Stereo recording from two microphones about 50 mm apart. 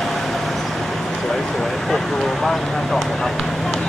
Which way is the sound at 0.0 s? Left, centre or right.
Centre.